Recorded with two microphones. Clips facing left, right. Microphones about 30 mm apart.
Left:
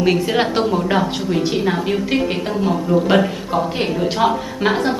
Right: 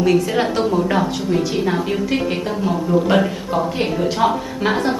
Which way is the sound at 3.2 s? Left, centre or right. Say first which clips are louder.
Even; centre.